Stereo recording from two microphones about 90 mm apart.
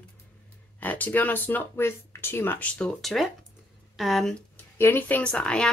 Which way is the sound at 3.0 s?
Centre (ahead or behind).